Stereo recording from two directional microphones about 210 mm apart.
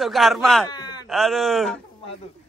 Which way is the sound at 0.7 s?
20° left (ahead or behind).